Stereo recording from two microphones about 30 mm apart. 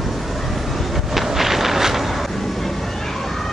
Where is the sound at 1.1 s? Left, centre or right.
Centre.